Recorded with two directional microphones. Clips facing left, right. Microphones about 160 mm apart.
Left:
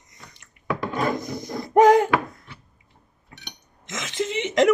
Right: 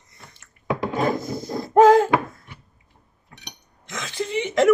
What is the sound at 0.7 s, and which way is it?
Wood, 20° right (ahead or behind).